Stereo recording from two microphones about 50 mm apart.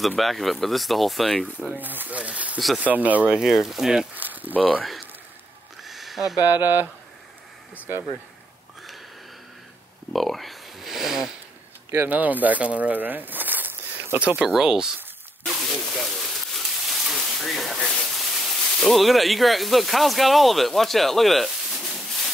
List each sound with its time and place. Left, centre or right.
0.2 s speech: centre
1.7 s speech: right
2.1 s speech: right
3.3 s speech: centre
4.2 s a sound: right
4.6 s speech: left
5.9 s a sound: centre
6.5 s speech: right
10.1 s a sound: centre
12.0 s speech: right
14.2 s speech: right
14.5 s speech: centre
15.4 s a sound: centre
18.1 s speech: centre